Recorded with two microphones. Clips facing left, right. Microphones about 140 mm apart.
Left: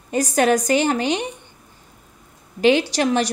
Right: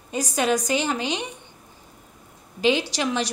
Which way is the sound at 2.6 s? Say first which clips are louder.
Left 5 dB; 60° left (ahead or behind).